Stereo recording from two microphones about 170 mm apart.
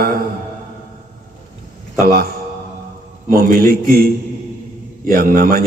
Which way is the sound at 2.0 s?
60° right (ahead or behind).